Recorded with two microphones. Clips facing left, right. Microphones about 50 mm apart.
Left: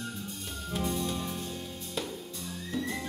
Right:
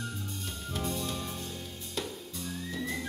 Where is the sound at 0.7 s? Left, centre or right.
Centre.